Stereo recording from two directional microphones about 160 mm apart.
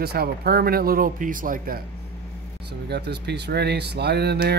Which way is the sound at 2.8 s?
90° right.